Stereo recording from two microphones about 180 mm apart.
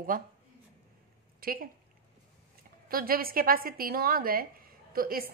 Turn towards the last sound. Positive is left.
turn(degrees=-55)  # may be behind; listen again after turning